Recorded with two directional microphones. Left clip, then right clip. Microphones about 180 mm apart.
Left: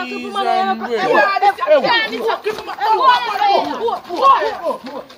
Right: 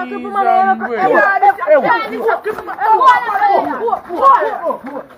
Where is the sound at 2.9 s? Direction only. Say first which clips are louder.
Right 4 dB; 20° left (ahead or behind).